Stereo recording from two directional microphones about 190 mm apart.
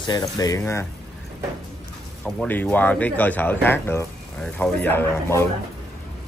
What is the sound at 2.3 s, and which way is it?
Speech, 5° left (ahead or behind).